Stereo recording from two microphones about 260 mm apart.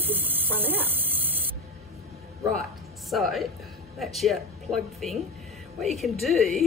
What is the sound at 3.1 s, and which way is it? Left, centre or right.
Speech, centre.